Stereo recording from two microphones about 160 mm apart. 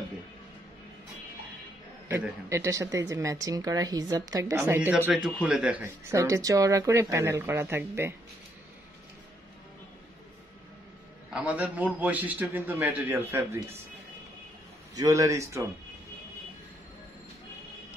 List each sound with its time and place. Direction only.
2.0 s a man's voice: 20° right (ahead or behind)
6.1 s speech: 20° right (ahead or behind)
11.2 s a man's voice: 5° right (ahead or behind)
15.0 s speech: 20° right (ahead or behind)